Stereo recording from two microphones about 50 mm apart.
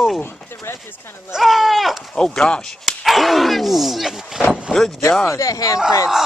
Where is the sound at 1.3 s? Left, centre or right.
Centre.